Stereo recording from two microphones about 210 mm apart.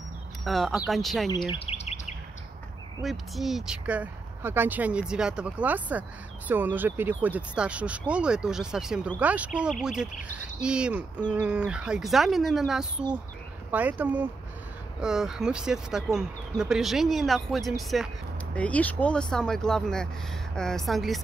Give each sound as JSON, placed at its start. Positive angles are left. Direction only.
{"t": 0.4, "sound": "speech", "side_deg": 0}
{"t": 1.5, "sound": "bird vocalization", "side_deg": 30}
{"t": 3.0, "sound": "speech", "side_deg": 0}